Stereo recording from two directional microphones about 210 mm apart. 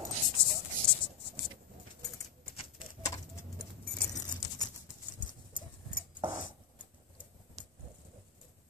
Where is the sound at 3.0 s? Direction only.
15° left (ahead or behind).